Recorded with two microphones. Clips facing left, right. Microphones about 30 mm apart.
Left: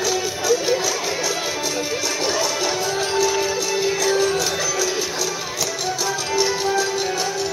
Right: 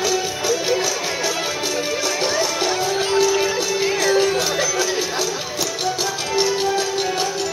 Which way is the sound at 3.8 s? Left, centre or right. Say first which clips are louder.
Right 2 dB; right.